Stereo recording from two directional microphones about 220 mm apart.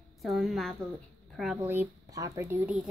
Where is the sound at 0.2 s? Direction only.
Centre (ahead or behind).